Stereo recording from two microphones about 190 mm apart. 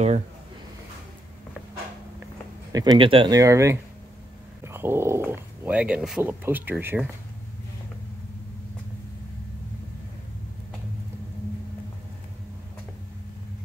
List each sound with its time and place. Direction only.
2.7 s speech: 20° right (ahead or behind)